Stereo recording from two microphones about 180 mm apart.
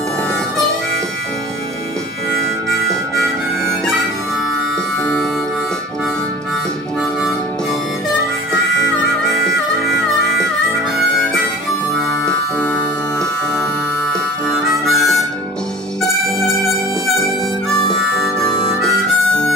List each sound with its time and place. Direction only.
9.3 s harmonica: centre (ahead or behind)
12.3 s keyboard: 5° left (ahead or behind)
14.9 s harmonica: centre (ahead or behind)
17.6 s harmonica: centre (ahead or behind)